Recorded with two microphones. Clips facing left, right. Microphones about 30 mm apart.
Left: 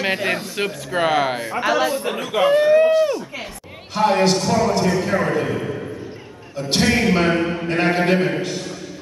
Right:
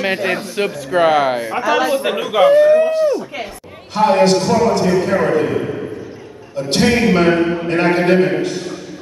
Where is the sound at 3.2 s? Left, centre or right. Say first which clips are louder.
Right 5 dB; centre.